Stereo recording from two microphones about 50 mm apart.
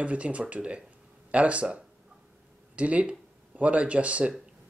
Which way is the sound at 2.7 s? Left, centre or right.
Right.